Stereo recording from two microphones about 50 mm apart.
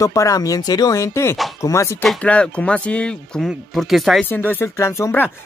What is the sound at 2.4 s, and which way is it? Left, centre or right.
Speech, left.